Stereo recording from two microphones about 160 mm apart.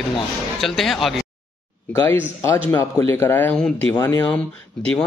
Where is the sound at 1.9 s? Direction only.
15° left (ahead or behind).